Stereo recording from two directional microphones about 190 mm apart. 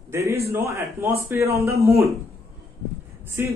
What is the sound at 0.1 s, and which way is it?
Speech, 15° right (ahead or behind).